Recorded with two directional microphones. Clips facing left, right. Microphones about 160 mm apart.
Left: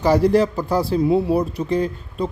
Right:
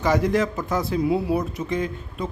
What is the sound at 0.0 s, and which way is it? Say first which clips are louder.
Speech: left 5 dB; 35° left (ahead or behind).